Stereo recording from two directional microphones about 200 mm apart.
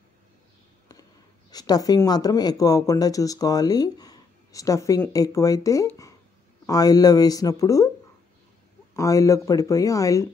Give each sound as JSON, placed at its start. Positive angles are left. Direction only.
{"t": 1.5, "sound": "speech", "side_deg": 20}
{"t": 8.9, "sound": "speech", "side_deg": 15}